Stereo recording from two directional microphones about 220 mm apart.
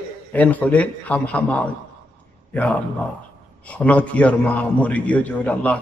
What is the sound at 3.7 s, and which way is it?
A man's voice, 5° left (ahead or behind).